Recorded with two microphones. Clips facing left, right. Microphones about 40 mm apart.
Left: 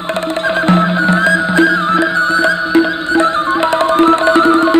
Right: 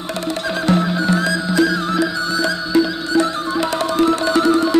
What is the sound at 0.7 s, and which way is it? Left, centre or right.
Music, left.